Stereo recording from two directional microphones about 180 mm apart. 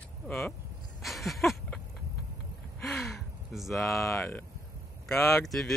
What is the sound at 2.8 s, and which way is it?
Gasp, centre (ahead or behind).